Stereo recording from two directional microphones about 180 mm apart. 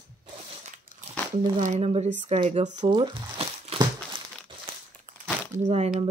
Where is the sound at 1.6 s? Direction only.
40° right (ahead or behind).